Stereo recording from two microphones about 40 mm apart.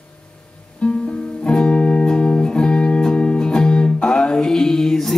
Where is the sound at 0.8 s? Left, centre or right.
Left.